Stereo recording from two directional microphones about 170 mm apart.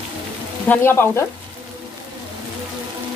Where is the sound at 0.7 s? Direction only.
15° left (ahead or behind).